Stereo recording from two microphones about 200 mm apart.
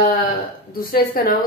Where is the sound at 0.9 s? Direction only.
45° left (ahead or behind).